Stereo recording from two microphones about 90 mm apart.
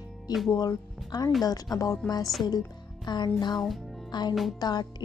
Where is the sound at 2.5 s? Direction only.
50° left (ahead or behind).